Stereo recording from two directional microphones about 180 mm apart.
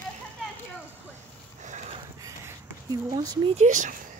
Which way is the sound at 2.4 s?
20° right (ahead or behind).